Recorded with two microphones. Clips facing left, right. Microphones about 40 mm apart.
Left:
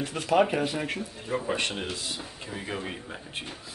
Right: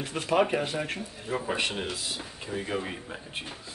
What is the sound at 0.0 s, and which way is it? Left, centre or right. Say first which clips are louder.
Speech: left 2 dB; centre.